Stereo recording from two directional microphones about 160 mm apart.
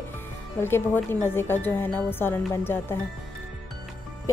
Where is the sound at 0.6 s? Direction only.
15° left (ahead or behind).